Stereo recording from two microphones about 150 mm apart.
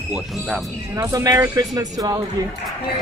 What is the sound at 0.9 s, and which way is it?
Speech, 20° right (ahead or behind).